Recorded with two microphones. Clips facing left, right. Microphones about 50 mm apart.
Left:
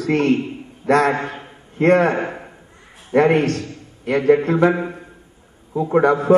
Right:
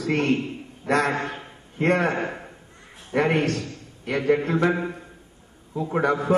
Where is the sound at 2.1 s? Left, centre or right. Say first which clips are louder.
Left 4 dB; centre.